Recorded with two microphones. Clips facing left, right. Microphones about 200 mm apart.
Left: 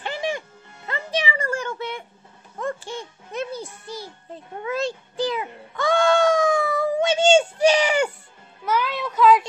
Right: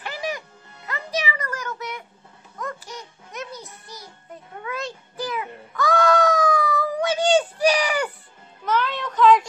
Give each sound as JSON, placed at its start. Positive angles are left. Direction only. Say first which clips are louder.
{"t": 0.0, "sound": "music", "louder": "left 3 dB", "side_deg": 25}
{"t": 8.6, "sound": "music", "louder": "even", "side_deg": 10}